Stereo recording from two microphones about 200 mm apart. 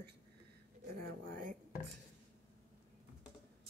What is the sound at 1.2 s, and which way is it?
Speech, 40° right (ahead or behind).